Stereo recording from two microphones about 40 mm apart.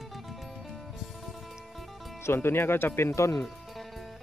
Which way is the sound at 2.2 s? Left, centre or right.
Left.